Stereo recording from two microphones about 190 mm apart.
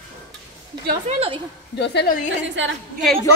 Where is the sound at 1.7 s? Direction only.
60° left (ahead or behind).